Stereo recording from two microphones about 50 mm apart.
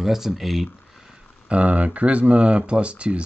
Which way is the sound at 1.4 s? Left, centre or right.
Right.